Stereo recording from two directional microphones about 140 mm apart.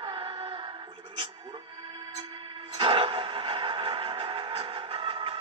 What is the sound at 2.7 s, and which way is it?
Music, 40° right (ahead or behind).